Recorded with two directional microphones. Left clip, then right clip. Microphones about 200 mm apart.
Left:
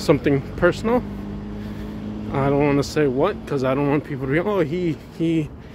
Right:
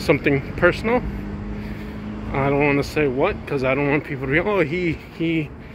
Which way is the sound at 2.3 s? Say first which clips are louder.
Even; 25° left (ahead or behind).